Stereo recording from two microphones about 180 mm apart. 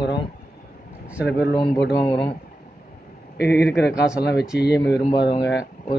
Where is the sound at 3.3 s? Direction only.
65° left (ahead or behind).